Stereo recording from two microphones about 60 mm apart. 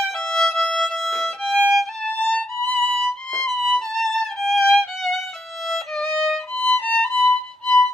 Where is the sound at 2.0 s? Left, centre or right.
Left.